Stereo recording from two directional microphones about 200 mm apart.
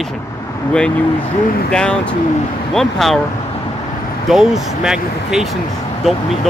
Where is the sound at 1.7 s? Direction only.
5° left (ahead or behind).